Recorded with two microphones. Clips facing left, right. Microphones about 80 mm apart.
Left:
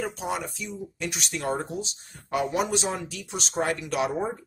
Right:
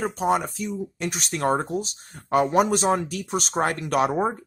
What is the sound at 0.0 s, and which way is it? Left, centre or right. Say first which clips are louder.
Speech: right 7 dB; right.